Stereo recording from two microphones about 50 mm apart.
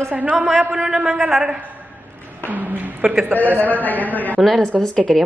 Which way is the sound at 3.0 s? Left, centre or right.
Centre.